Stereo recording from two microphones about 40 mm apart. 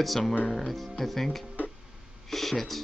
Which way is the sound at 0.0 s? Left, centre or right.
Centre.